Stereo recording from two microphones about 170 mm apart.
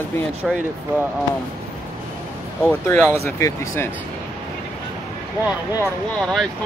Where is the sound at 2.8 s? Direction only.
10° left (ahead or behind).